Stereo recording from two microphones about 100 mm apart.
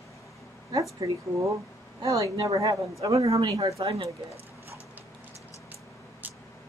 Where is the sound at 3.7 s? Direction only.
75° right (ahead or behind).